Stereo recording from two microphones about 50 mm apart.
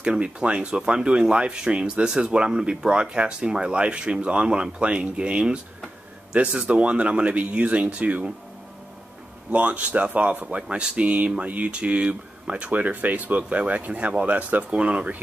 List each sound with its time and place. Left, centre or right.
0.0 s speech: centre
9.5 s speech: right